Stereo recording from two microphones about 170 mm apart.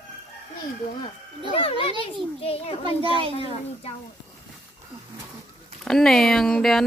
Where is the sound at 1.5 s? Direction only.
30° left (ahead or behind).